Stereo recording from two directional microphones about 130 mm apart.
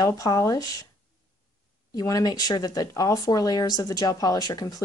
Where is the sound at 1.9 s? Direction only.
30° left (ahead or behind).